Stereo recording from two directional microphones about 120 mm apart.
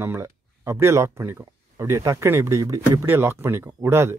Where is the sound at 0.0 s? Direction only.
20° right (ahead or behind).